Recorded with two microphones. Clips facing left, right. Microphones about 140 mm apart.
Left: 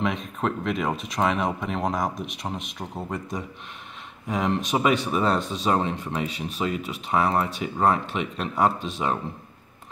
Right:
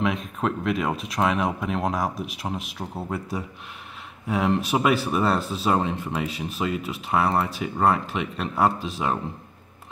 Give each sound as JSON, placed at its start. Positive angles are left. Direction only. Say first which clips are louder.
{"t": 0.0, "sound": "speech", "louder": "right 1 dB", "side_deg": 0}